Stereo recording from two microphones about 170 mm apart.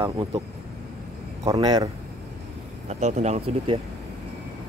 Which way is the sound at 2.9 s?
40° right (ahead or behind).